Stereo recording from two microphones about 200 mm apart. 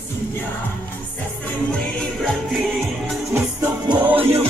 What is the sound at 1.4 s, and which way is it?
Music, 5° left (ahead or behind).